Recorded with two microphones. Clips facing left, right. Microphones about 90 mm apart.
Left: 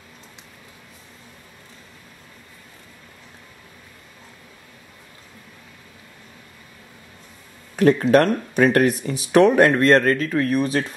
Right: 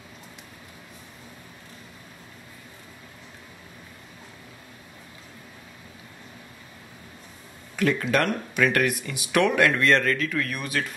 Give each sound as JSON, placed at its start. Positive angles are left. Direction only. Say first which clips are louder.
{"t": 7.7, "sound": "speech", "louder": "left 8 dB", "side_deg": 35}